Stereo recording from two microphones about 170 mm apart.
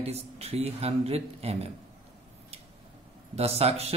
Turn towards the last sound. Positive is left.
turn(degrees=-40)  # may be behind; listen again after turning